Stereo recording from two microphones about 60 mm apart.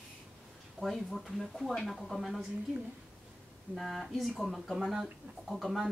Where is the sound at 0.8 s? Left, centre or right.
Centre.